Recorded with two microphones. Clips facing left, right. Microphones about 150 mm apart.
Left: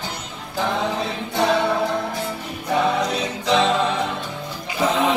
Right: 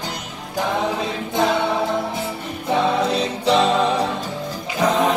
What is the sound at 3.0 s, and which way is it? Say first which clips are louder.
Music: right 4 dB; 30° right (ahead or behind).